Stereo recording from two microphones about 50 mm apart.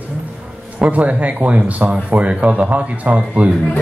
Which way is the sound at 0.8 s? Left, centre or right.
Right.